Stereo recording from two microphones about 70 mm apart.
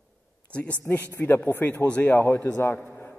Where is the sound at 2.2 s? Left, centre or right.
Left.